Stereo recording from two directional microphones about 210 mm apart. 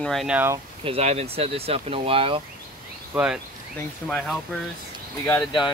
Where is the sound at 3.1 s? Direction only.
5° right (ahead or behind).